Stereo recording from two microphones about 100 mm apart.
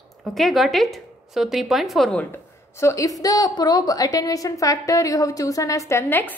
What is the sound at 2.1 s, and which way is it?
A woman's voice, 25° left (ahead or behind).